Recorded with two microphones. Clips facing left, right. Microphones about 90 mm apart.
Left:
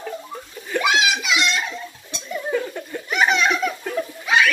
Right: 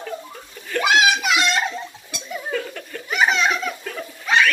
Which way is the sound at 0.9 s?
40° right (ahead or behind).